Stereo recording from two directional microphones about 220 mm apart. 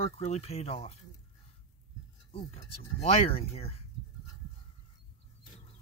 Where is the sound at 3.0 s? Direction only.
25° left (ahead or behind).